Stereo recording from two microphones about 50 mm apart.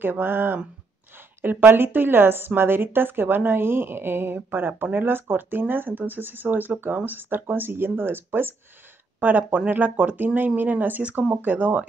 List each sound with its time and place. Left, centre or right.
0.0 s speech: right
9.2 s speech: right